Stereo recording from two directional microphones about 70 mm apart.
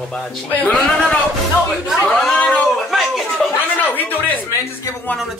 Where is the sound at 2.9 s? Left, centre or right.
Centre.